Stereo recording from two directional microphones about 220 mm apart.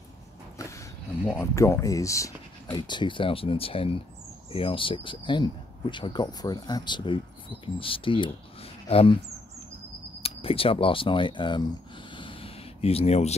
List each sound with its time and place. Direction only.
0.6 s speech: 15° left (ahead or behind)
10.2 s speech: 25° left (ahead or behind)